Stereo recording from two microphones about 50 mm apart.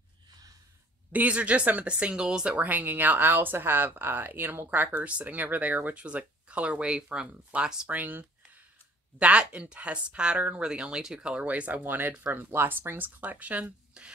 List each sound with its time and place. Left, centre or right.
1.1 s a woman's voice: right
2.5 s a woman's voice: right; by 7.9 s centre
7.9 s speech: right
9.2 s a woman's voice: right
10.6 s speech: centre
11.2 s a woman's voice: right
11.8 s speech: right
14.0 s speech: centre